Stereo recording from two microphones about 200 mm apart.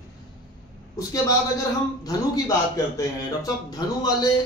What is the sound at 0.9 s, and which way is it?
A man's voice, 15° left (ahead or behind).